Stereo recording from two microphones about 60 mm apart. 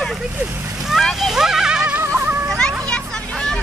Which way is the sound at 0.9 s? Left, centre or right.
Centre.